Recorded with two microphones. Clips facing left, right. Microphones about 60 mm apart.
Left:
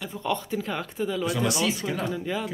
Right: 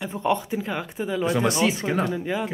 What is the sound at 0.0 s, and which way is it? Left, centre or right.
Speech, right.